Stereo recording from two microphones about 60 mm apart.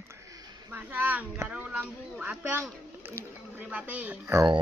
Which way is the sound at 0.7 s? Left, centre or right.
Right.